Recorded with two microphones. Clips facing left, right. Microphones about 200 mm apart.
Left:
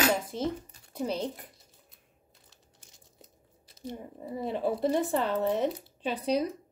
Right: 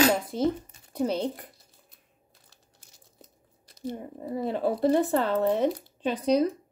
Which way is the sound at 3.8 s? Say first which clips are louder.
Right 5 dB; 40° right (ahead or behind).